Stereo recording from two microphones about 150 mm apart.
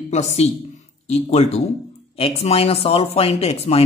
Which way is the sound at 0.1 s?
45° left (ahead or behind).